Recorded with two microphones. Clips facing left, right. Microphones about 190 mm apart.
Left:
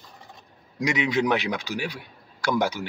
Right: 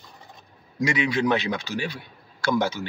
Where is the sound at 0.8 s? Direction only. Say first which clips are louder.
Even; 20° left (ahead or behind).